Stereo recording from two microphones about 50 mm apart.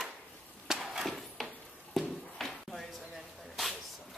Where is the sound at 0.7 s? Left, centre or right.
Centre.